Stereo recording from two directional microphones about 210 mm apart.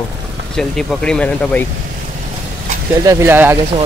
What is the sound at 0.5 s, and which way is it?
Speech, 5° left (ahead or behind).